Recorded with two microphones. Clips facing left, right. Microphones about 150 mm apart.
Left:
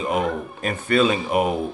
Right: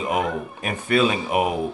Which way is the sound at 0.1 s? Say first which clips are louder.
Even; 10° right (ahead or behind).